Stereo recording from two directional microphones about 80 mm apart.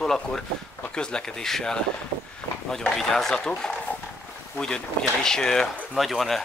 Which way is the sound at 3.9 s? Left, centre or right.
Left.